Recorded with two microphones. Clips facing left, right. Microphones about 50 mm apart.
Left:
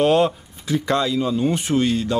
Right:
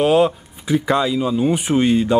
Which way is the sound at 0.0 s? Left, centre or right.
Centre.